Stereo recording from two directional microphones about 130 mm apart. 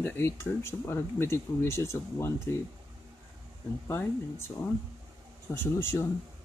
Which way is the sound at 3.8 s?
20° left (ahead or behind).